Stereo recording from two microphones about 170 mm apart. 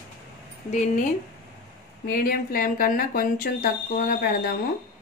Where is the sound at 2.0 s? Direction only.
60° left (ahead or behind).